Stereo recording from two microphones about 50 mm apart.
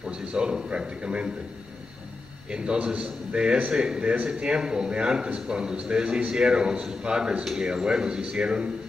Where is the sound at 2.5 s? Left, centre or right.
Centre.